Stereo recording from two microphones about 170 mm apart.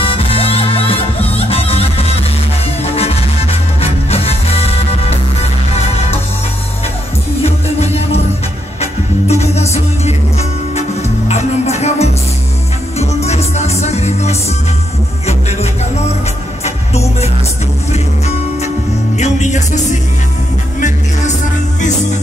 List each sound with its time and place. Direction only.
0.0 s music: 35° left (ahead or behind)
7.4 s music: 40° left (ahead or behind)
9.3 s music: 40° left (ahead or behind)
16.6 s music: 40° left (ahead or behind)
19.1 s music: 45° left (ahead or behind)